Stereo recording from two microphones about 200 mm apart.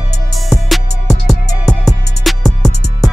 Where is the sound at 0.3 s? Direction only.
Centre (ahead or behind).